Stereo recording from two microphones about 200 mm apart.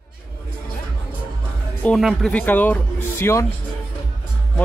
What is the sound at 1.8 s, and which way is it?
Speech, centre (ahead or behind).